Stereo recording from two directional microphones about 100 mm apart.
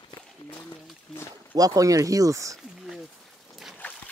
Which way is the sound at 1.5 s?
35° right (ahead or behind).